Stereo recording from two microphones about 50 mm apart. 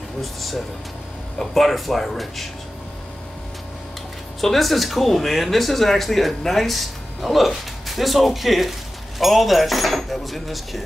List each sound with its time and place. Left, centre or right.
0.2 s speech: centre
4.4 s speech: centre